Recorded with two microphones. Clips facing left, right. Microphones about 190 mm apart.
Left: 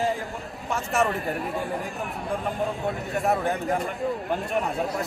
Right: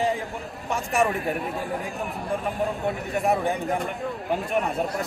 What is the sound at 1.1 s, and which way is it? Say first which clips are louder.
Speech: right 1 dB; centre (ahead or behind).